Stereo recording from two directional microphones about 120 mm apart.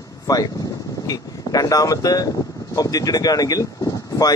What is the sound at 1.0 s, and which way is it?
Speech, 30° left (ahead or behind).